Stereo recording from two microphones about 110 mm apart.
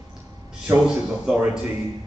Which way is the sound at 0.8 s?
5° right (ahead or behind).